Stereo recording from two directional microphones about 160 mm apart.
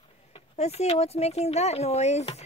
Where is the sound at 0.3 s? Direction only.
40° left (ahead or behind).